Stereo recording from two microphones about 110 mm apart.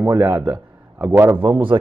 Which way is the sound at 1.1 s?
30° right (ahead or behind).